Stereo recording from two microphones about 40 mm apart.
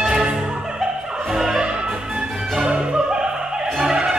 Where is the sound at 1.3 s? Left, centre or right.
Centre.